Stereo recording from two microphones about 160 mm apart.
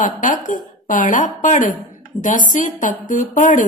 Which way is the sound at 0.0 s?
55° left (ahead or behind).